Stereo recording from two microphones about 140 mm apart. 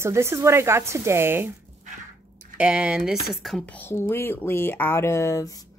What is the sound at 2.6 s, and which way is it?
Speech, 5° right (ahead or behind).